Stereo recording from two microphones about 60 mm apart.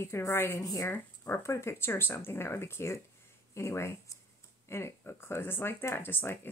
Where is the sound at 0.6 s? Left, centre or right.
Left.